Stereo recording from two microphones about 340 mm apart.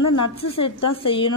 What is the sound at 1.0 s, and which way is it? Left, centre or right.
Speech, centre.